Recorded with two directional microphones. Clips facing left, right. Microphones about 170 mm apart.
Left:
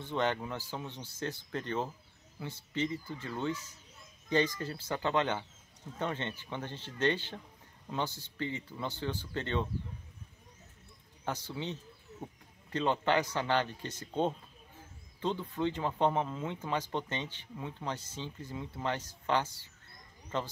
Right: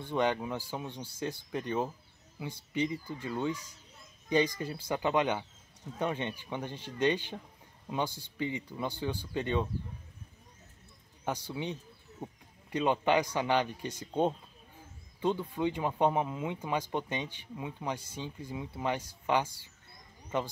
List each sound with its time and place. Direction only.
0.0 s speech: 15° right (ahead or behind)
11.2 s speech: 15° right (ahead or behind)